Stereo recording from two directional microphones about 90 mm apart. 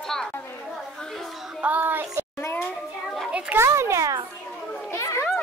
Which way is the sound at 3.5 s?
30° right (ahead or behind).